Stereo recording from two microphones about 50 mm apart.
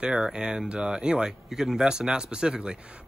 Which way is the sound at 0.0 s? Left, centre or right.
Centre.